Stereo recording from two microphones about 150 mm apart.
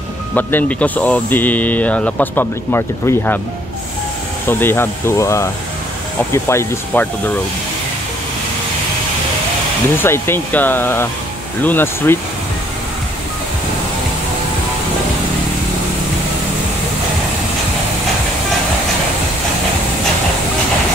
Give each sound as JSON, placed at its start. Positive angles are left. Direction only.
{"t": 0.3, "sound": "speech", "side_deg": 10}
{"t": 4.5, "sound": "speech", "side_deg": 15}
{"t": 9.9, "sound": "speech", "side_deg": 15}